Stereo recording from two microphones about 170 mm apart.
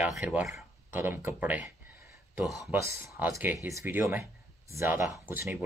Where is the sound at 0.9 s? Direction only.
10° right (ahead or behind).